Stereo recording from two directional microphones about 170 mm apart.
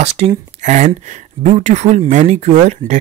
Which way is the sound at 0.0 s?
40° right (ahead or behind).